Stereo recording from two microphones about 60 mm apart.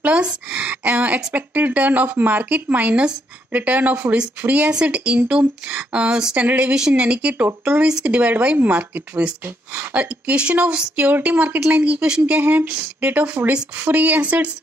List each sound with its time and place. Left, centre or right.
0.0 s a woman's voice: right
6.4 s a woman's voice: right